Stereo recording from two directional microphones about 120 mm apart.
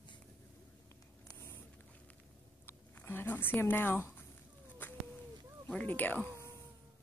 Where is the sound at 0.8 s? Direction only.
20° left (ahead or behind).